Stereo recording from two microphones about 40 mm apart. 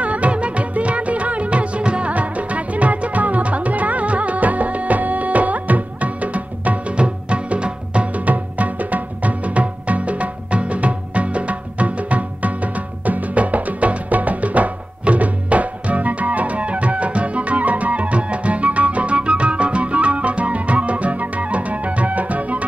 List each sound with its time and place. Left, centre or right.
0.0 s music: right